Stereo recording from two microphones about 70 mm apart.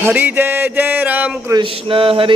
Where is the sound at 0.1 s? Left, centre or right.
Right.